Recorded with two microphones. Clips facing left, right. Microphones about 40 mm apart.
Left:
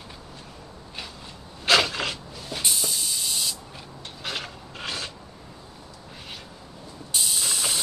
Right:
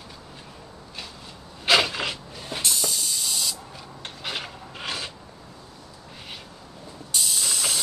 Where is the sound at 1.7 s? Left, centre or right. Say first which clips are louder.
Even; centre.